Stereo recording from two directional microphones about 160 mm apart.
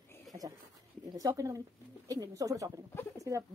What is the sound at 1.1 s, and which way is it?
Speech, 20° right (ahead or behind).